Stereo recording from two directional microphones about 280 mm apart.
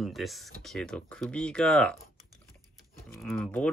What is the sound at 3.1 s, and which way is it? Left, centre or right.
Speech, centre.